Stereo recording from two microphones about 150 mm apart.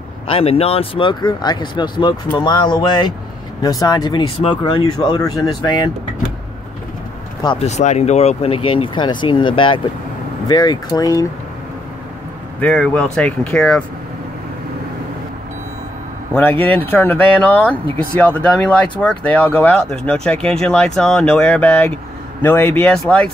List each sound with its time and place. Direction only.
0.3 s speech: 40° left (ahead or behind)
7.5 s speech: 50° left (ahead or behind); by 11.2 s 25° left (ahead or behind)
12.5 s speech: 10° left (ahead or behind)
16.7 s speech: 15° left (ahead or behind)